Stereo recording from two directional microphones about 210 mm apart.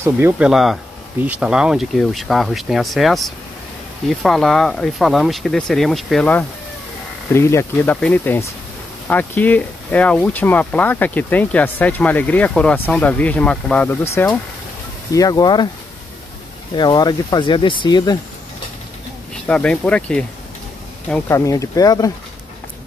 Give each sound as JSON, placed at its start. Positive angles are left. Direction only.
{"t": 0.0, "sound": "speech", "side_deg": -10}
{"t": 16.7, "sound": "speech", "side_deg": 20}
{"t": 19.4, "sound": "speech", "side_deg": 5}